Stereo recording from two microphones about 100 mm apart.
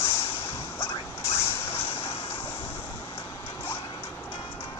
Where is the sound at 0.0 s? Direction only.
80° left.